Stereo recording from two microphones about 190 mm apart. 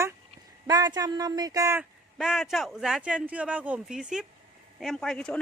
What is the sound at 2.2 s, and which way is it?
Speech, centre (ahead or behind).